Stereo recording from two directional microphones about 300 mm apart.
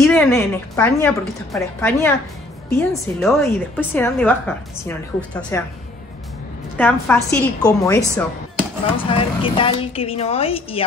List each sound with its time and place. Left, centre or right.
0.0 s a woman's voice: centre
6.8 s a woman's voice: centre